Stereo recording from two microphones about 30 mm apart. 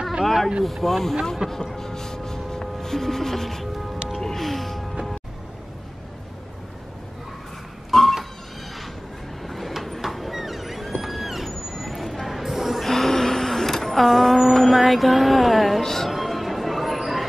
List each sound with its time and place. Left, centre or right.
0.2 s vehicle: centre
0.7 s music: centre
1.4 s speech: right
1.8 s music: centre
4.5 s music: centre
7.9 s a sound: centre
9.4 s vehicle: centre
10.0 s a sound: centre
12.8 s a sound: centre
15.8 s music: centre
16.1 s music: centre